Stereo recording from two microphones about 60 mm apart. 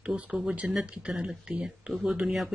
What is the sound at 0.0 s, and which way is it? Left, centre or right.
Speech, centre.